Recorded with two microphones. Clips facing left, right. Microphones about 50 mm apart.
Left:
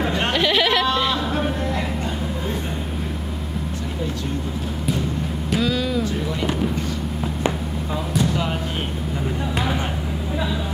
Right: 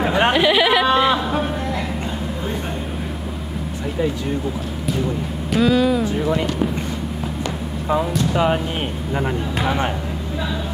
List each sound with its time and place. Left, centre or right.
0.0 s bleat: right
5.6 s speech: centre
8.3 s speech: right